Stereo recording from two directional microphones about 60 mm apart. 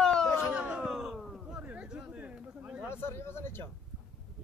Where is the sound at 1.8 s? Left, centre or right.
Centre.